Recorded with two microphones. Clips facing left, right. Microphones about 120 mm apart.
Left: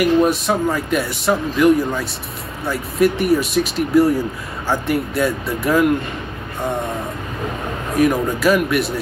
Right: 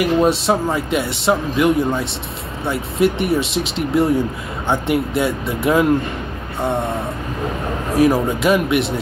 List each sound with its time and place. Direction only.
0.0 s speech: 25° right (ahead or behind)
8.0 s speech: 25° right (ahead or behind)